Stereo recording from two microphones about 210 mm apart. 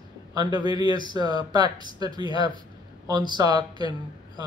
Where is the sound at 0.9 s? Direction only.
20° right (ahead or behind).